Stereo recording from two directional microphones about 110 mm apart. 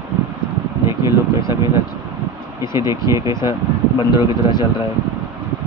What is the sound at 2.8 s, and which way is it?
Speech, 25° right (ahead or behind).